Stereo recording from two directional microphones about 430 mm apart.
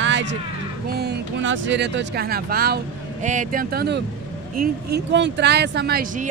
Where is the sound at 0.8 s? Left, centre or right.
Right.